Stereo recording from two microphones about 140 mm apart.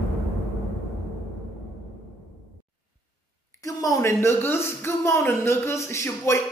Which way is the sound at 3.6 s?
25° left (ahead or behind).